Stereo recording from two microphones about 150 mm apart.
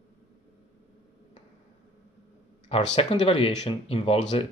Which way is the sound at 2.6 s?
50° left (ahead or behind).